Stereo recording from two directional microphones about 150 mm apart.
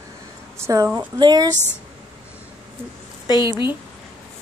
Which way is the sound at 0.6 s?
20° right (ahead or behind).